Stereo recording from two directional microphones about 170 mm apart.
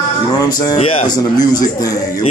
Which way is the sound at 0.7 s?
35° left (ahead or behind).